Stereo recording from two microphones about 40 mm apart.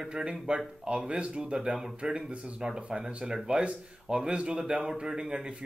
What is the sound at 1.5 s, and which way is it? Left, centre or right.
A man's voice, centre.